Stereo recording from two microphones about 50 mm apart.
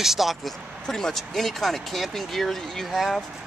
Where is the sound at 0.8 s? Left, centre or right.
Centre.